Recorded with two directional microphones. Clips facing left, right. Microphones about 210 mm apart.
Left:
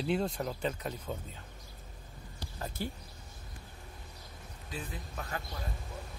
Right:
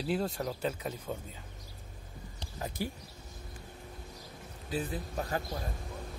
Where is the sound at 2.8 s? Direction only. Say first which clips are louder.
Right 1 dB; 10° right (ahead or behind).